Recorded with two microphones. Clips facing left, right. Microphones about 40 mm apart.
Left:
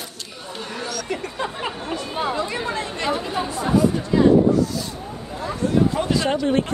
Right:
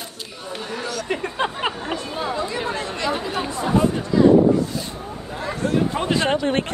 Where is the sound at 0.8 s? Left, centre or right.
Right.